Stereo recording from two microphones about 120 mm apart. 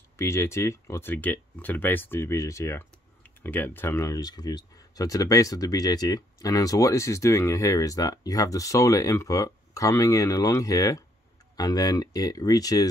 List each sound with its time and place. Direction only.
0.2 s speech: 20° left (ahead or behind)